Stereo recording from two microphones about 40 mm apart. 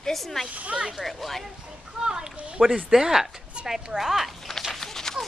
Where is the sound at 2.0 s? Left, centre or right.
Centre.